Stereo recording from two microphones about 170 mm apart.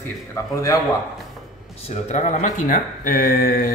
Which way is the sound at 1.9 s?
40° left (ahead or behind).